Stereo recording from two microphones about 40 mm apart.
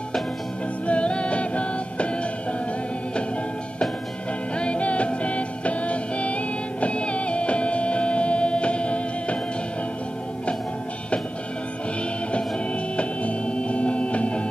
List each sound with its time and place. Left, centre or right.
0.8 s music: left
4.6 s music: left
12.9 s music: left